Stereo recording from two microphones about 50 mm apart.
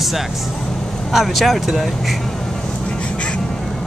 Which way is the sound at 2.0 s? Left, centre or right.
Centre.